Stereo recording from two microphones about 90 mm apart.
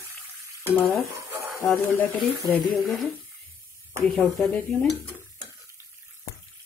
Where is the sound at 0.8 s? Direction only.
30° left (ahead or behind).